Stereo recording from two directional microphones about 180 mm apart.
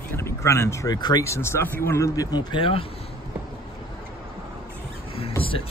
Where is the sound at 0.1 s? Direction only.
15° left (ahead or behind).